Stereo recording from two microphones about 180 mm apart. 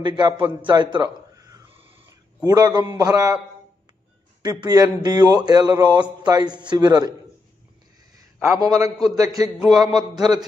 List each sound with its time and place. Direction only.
0.0 s speech: 25° right (ahead or behind)
0.9 s a sound: 20° right (ahead or behind)
2.4 s speech: 20° right (ahead or behind)
4.4 s speech: 20° right (ahead or behind)
8.4 s speech: 15° right (ahead or behind)